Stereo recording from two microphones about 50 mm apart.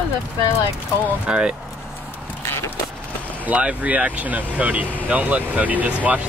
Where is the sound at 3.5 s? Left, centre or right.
Right.